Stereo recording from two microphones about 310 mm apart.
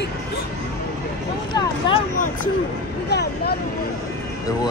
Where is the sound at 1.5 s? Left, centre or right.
Left.